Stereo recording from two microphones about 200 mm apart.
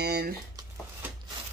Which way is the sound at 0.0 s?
55° right (ahead or behind).